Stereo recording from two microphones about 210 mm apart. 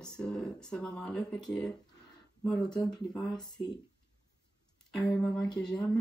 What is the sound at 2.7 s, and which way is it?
Speech, 20° left (ahead or behind).